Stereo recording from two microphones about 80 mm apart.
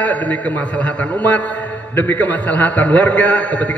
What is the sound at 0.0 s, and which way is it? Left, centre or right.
A man's voice, left.